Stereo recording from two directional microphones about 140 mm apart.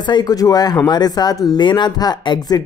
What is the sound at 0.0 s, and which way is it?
Speech, 30° left (ahead or behind).